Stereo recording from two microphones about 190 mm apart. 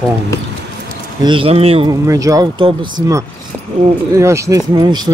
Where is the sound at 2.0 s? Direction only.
15° right (ahead or behind).